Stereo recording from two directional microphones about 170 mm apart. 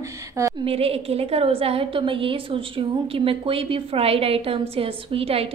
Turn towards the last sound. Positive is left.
turn(degrees=-35)  # may be behind; listen again after turning